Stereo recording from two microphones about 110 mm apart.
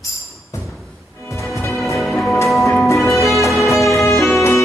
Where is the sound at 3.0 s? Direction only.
30° left (ahead or behind).